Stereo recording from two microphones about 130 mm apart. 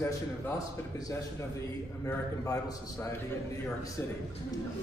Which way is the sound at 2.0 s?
25° left (ahead or behind).